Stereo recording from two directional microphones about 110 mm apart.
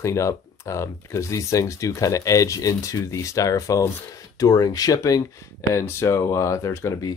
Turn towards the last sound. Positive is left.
turn(degrees=25)  # may be behind; listen again after turning